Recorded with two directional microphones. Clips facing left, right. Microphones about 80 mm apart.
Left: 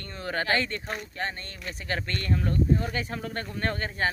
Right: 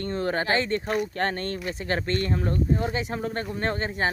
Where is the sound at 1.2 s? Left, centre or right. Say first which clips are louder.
Right 7 dB; right.